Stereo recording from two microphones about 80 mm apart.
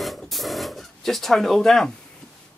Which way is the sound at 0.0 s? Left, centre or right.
Centre.